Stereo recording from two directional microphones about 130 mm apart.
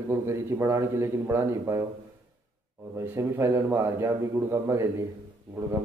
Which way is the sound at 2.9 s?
20° right (ahead or behind).